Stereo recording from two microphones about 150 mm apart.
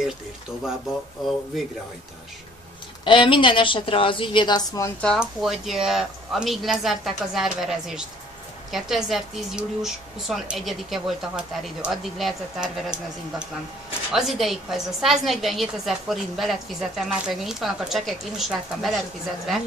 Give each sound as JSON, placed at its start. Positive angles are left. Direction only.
{"t": 3.1, "sound": "a woman's voice", "side_deg": 35}
{"t": 5.0, "sound": "a woman's voice", "side_deg": 0}